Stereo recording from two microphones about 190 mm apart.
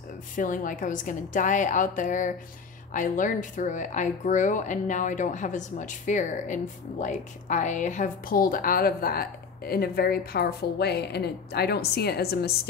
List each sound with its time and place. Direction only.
0.4 s speech: 45° left (ahead or behind)